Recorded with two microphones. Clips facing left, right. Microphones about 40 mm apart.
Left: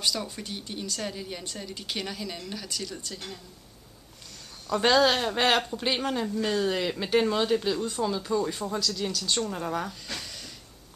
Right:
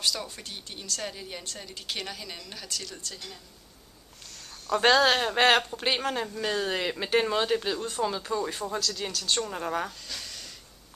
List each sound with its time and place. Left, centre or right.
0.0 s a woman's voice: centre
4.9 s speech: centre